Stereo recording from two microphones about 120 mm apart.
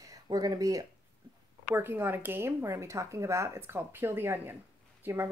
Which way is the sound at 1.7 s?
15° right (ahead or behind).